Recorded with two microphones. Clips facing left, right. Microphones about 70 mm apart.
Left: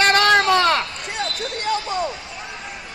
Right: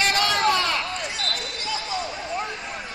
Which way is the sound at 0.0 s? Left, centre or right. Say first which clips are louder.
Left 6 dB; left.